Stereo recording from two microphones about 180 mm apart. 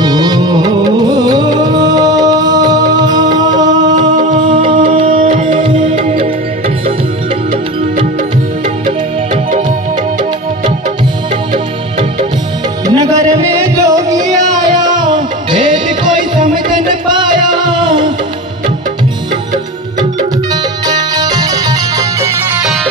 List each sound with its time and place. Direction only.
0.0 s music: 20° right (ahead or behind)
3.8 s music: 45° right (ahead or behind)
4.5 s music: 30° right (ahead or behind)
12.8 s music: 20° right (ahead or behind)
15.5 s music: 25° right (ahead or behind)
16.3 s music: 45° right (ahead or behind)
17.2 s music: 25° right (ahead or behind)
20.8 s music: 20° right (ahead or behind)